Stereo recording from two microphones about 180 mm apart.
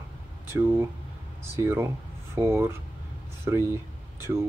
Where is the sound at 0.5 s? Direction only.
10° right (ahead or behind).